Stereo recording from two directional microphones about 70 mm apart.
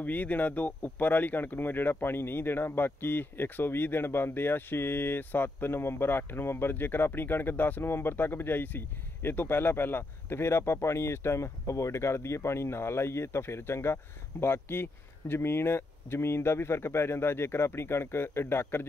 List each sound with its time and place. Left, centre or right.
0.0 s speech: left